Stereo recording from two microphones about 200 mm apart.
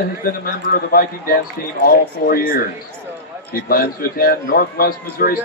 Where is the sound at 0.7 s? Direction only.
45° left (ahead or behind).